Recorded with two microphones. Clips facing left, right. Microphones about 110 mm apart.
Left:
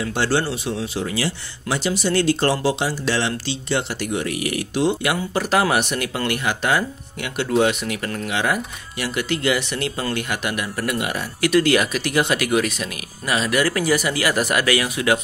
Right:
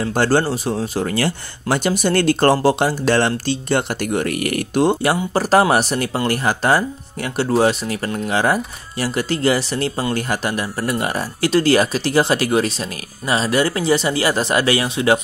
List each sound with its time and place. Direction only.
0.0 s speech: 45° right (ahead or behind)
5.0 s speech: 35° right (ahead or behind)